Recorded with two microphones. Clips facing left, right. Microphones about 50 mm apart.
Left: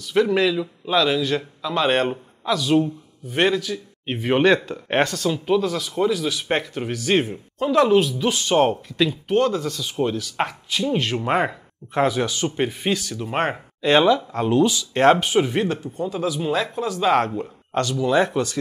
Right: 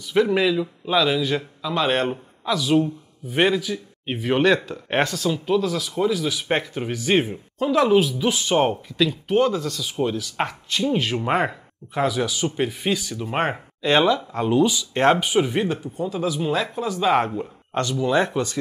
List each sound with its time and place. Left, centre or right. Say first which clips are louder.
0.0 s speech: even; centre
4.0 s speech: left 1 dB; centre
9.6 s speech: left 1 dB; centre
11.9 s speech: left 2 dB; centre
14.3 s speech: left 1 dB; centre
18.4 s speech: left 1 dB; centre